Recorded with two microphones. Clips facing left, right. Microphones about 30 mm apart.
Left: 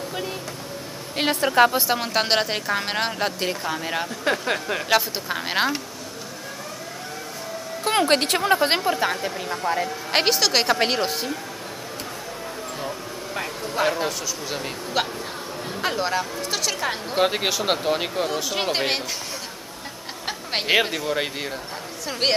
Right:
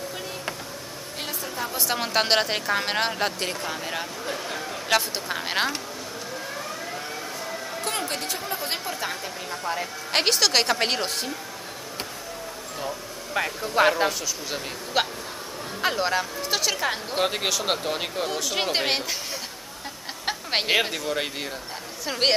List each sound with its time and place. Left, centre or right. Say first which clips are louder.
1.3 s speech: left 16 dB; left
1.9 s speech: left 1 dB; centre
4.2 s speech: left 7 dB; left
4.8 s speech: left 1 dB; centre
7.8 s a sound: left 9 dB; left
8.1 s speech: left 11 dB; left
8.8 s speech: left 8 dB; left; by 11.3 s centre
13.3 s speech: right 4 dB; centre
15.0 s speech: even; centre
20.2 s a sound: even; centre
20.7 s speech: left 5 dB; centre
22.0 s a woman's voice: even; centre